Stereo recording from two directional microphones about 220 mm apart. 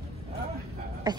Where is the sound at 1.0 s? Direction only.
20° right (ahead or behind).